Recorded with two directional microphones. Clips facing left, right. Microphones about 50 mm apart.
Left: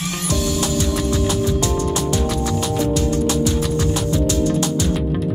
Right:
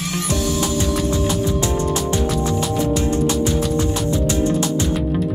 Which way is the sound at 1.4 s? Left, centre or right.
Right.